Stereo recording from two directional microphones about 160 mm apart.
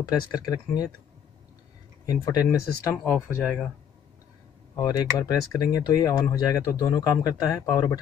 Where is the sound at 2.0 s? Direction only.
20° left (ahead or behind).